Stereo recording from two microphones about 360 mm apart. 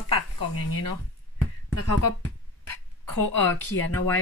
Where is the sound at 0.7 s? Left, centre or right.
Left.